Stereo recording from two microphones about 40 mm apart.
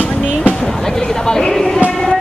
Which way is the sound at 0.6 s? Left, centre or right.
Centre.